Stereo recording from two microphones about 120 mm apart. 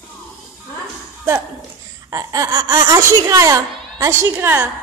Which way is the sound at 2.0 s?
30° right (ahead or behind).